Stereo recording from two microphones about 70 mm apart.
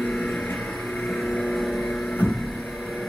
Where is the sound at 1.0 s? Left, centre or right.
Centre.